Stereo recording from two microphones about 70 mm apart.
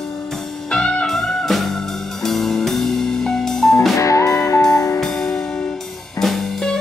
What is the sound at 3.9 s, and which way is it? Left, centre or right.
Music, left.